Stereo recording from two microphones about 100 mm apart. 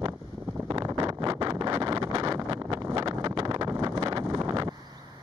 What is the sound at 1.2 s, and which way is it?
Vehicle, 50° right (ahead or behind).